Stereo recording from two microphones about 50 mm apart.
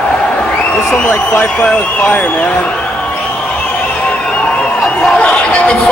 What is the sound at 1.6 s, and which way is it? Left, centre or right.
Speech, left.